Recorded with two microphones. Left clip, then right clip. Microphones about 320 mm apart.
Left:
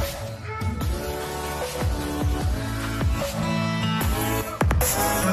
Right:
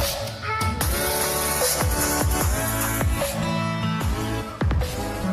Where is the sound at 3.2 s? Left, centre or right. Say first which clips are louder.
Left 1 dB; centre.